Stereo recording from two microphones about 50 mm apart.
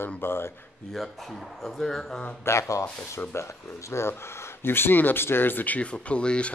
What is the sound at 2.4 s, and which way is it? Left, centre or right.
Speech, left.